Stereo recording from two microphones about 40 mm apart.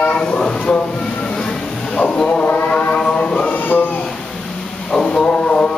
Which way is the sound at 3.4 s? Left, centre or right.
Left.